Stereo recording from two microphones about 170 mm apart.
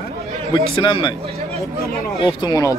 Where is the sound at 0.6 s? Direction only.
30° left (ahead or behind).